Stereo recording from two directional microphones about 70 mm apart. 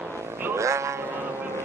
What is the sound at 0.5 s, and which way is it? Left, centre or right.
Sheep, right.